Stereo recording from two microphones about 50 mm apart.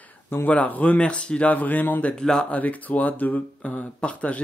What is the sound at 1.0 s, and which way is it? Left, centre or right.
A man's voice, left.